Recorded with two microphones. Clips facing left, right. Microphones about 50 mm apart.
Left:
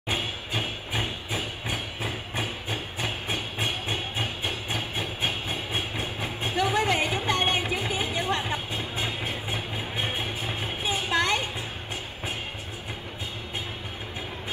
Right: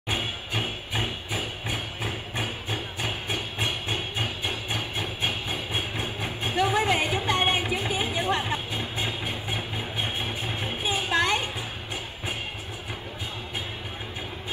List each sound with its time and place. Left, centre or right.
1.0 s hammer: centre
5.7 s train: centre
6.6 s a sound: centre
7.2 s music: centre
8.9 s vehicle: centre
10.6 s music: centre